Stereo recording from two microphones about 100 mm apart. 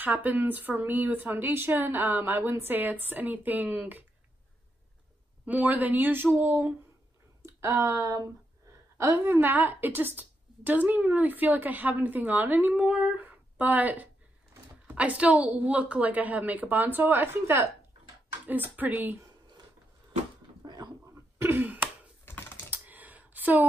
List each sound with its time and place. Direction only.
0.0 s speech: 20° right (ahead or behind)
5.4 s a woman's voice: 15° right (ahead or behind)
20.6 s a sound: 45° right (ahead or behind)
21.4 s throat clearing: 20° right (ahead or behind)
22.3 s typing: 25° left (ahead or behind)
22.7 s a sound: 15° right (ahead or behind)